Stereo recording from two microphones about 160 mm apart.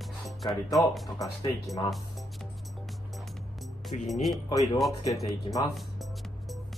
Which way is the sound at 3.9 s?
45° left (ahead or behind).